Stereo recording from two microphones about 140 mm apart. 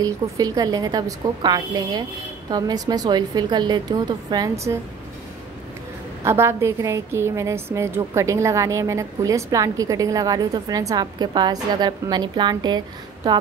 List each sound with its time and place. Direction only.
0.0 s a woman's voice: 25° right (ahead or behind)
6.2 s a woman's voice: 20° right (ahead or behind)